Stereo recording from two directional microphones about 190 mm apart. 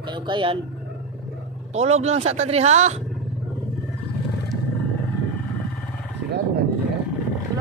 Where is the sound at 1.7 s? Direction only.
35° right (ahead or behind).